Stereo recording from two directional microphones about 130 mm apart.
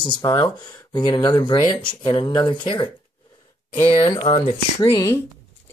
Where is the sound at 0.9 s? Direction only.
35° left (ahead or behind).